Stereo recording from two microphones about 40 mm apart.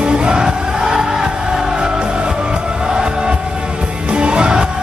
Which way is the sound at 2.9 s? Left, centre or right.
Centre.